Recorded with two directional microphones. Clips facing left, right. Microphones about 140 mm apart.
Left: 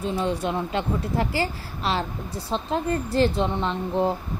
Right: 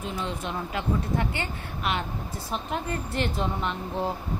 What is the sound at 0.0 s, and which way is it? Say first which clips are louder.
A woman's voice: left 7 dB; 35° left (ahead or behind).